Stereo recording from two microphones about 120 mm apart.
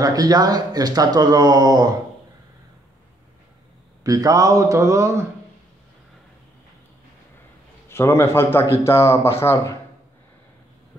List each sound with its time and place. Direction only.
0.0 s speech: 30° right (ahead or behind)
4.0 s a man's voice: 30° right (ahead or behind)
7.9 s speech: 20° left (ahead or behind)